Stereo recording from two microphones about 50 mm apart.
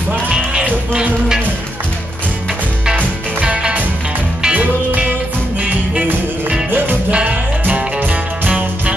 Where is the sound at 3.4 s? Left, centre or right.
Right.